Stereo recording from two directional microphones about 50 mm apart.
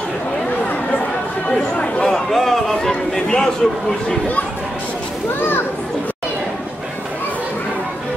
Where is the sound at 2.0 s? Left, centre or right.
Centre.